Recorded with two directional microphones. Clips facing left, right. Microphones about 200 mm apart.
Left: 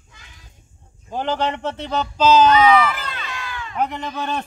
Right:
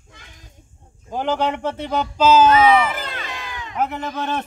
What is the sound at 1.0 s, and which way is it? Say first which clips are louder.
Speech: right 1 dB; 10° right (ahead or behind).